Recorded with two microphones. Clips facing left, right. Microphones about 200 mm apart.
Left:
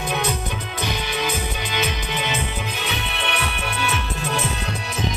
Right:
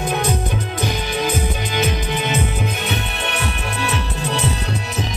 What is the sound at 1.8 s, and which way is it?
Music, 45° right (ahead or behind).